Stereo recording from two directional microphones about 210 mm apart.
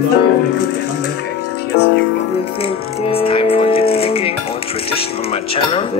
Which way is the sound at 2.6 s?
25° left (ahead or behind).